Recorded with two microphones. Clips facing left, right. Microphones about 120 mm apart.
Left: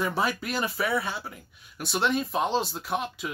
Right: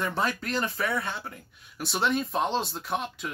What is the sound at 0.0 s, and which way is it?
Speech, 5° left (ahead or behind).